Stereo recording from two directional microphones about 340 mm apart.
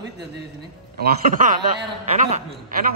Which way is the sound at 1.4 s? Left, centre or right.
Right.